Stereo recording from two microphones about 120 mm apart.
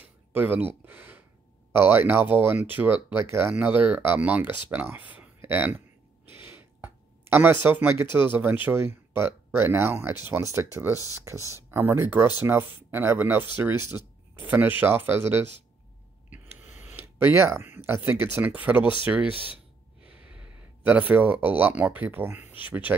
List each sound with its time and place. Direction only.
0.0 s speech: 15° right (ahead or behind)
6.3 s a sound: 20° right (ahead or behind)
7.6 s speech: 15° right (ahead or behind)
19.2 s speech: 45° left (ahead or behind)
20.1 s speech: 10° right (ahead or behind)